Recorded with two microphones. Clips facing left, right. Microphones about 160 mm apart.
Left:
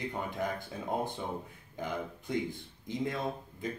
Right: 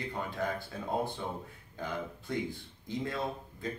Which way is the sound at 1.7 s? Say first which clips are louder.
Left 1 dB; 15° left (ahead or behind).